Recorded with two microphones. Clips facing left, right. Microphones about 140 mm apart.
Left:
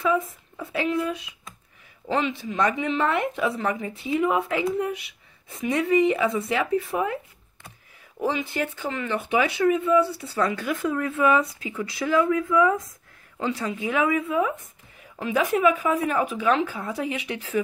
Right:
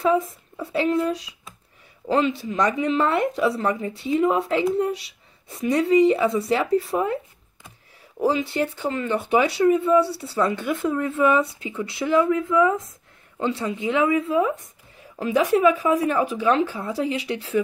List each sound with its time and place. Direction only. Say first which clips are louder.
0.0 s a man's voice: right 3 dB; 35° right (ahead or behind)
8.2 s speech: right 4 dB; 35° right (ahead or behind)